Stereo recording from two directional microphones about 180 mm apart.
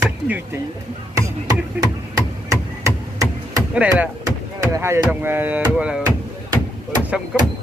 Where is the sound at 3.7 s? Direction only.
10° right (ahead or behind).